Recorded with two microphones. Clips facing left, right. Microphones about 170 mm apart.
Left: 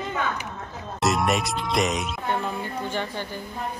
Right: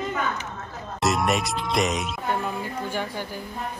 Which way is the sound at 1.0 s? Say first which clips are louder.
Even; centre (ahead or behind).